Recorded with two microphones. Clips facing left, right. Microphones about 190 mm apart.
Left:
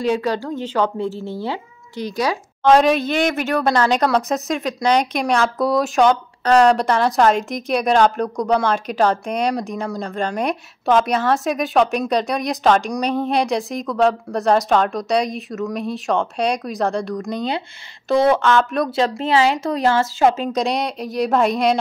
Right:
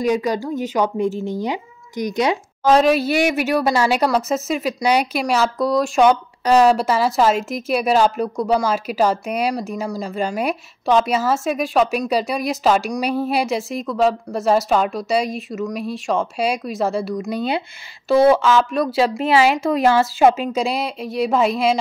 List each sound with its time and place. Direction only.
0.0 s speech: 10° right (ahead or behind)
2.6 s a woman's voice: centre (ahead or behind)